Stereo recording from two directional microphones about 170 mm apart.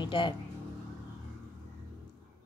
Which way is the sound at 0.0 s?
30° left (ahead or behind).